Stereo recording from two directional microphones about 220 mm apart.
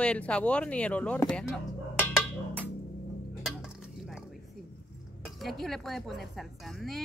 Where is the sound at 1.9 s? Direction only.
5° left (ahead or behind).